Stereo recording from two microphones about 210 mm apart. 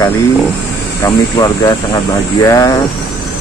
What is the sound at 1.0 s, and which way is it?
Speech, 15° left (ahead or behind).